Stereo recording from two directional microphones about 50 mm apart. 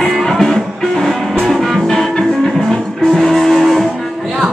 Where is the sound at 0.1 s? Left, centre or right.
Centre.